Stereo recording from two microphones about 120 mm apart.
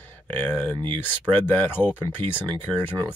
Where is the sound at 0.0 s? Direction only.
15° left (ahead or behind).